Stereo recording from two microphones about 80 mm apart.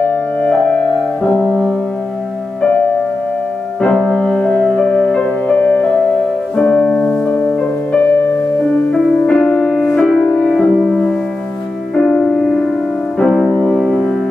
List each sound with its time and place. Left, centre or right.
0.4 s music: centre
3.8 s music: centre; by 8.8 s left
9.2 s music: centre
11.9 s music: centre